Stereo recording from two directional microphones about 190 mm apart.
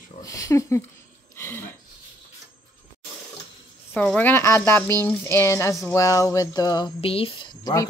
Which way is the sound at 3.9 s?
5° left (ahead or behind).